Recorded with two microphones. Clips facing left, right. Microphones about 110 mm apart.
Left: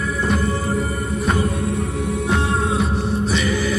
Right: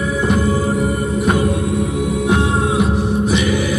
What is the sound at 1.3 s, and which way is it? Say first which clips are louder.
Music: right 4 dB; 65° right (ahead or behind).